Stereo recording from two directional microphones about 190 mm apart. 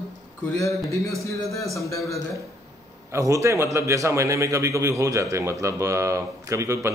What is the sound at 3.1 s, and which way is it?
A man's voice, 15° right (ahead or behind).